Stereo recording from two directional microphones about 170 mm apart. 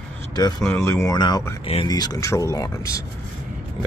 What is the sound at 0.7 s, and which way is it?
Speech, 15° left (ahead or behind).